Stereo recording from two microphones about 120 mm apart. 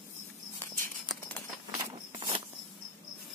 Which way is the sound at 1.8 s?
40° right (ahead or behind).